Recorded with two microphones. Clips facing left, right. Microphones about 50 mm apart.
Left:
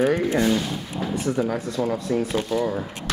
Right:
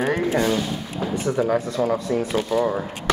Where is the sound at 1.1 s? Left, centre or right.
Centre.